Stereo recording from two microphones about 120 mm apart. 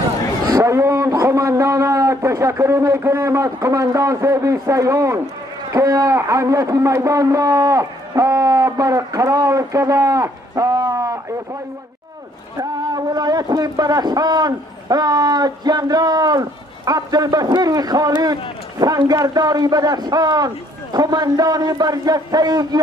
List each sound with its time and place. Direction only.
0.5 s a man's voice: 25° right (ahead or behind)
12.5 s speech: 30° right (ahead or behind)